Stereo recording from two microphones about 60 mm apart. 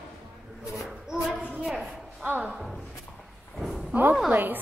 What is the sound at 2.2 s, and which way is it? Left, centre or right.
Speech, right.